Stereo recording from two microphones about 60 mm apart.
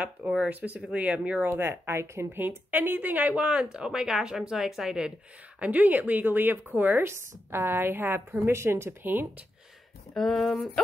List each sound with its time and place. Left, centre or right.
0.4 s speech: right
1.5 s speech: right
2.2 s speech: right; by 5.1 s centre
5.6 s speech: right
10.1 s speech: centre